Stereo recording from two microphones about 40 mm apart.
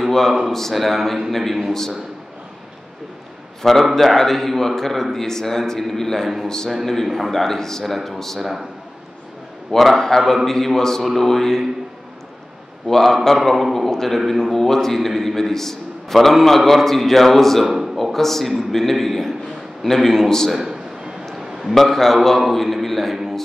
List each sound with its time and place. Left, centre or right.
0.5 s a man's voice: centre
3.9 s a man's voice: centre
6.7 s a man's voice: centre
7.8 s a man's voice: centre
8.4 s a man's voice: centre
9.7 s a man's voice: centre
12.8 s a man's voice: centre
20.5 s a sound: centre
21.7 s a man's voice: centre